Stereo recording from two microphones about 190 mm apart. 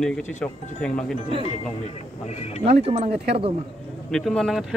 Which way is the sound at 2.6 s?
30° right (ahead or behind).